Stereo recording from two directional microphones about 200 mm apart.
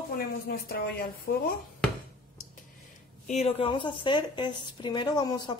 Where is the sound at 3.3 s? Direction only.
30° left (ahead or behind).